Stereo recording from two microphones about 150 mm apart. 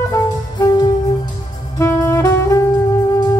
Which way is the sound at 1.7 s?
20° left (ahead or behind).